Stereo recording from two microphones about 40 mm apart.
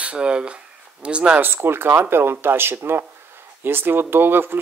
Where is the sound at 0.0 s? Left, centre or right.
Right.